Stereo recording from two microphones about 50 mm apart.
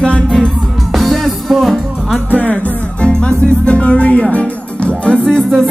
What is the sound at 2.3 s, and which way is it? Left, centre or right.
Music, left.